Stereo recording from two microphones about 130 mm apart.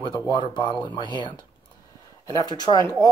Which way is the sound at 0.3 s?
35° left (ahead or behind).